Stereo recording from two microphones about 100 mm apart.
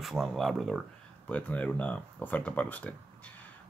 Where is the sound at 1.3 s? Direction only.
15° left (ahead or behind).